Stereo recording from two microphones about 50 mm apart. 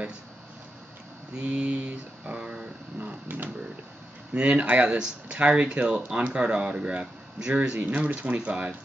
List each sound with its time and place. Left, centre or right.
1.3 s speech: right
3.3 s speech: right
4.3 s speech: right